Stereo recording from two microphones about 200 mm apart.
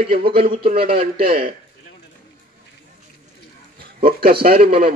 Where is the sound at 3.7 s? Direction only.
50° right (ahead or behind).